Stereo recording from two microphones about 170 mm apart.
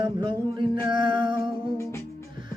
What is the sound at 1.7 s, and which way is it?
Music, 15° left (ahead or behind).